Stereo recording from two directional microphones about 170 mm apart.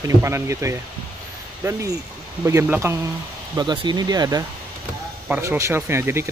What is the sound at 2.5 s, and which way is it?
Speech, 15° right (ahead or behind).